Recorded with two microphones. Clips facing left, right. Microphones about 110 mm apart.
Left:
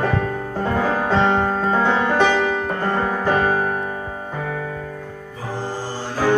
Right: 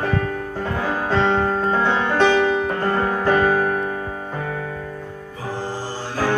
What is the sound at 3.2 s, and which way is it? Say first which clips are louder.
Music: right 2 dB; 20° left (ahead or behind).